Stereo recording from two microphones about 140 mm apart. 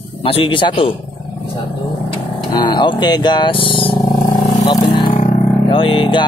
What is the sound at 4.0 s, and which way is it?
Vehicle, 25° left (ahead or behind).